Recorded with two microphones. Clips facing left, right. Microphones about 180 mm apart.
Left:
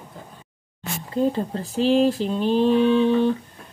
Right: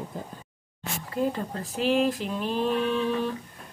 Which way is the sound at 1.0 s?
30° left (ahead or behind).